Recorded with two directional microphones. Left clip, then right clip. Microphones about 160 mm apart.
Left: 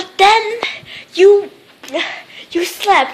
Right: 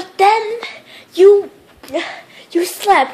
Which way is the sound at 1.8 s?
15° right (ahead or behind).